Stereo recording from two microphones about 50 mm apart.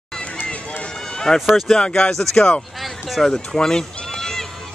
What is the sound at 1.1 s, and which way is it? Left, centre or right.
Run, centre.